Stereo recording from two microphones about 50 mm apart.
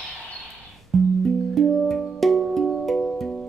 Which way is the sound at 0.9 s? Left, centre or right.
Centre.